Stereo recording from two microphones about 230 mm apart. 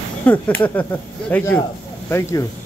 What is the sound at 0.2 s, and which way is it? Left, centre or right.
Speech, centre.